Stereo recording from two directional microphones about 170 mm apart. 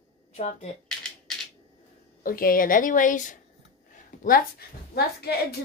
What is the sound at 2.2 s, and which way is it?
A woman's voice, 55° left (ahead or behind).